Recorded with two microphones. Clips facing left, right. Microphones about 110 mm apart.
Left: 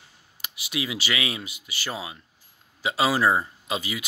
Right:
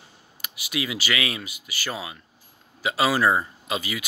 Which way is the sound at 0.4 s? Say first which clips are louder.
Right 1 dB; 25° left (ahead or behind).